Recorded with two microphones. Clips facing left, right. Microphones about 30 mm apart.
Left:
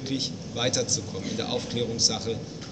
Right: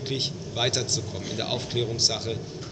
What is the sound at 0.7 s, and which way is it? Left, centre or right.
Speech, right.